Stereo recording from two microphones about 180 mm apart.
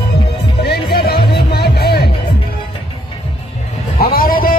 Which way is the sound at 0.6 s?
65° left (ahead or behind).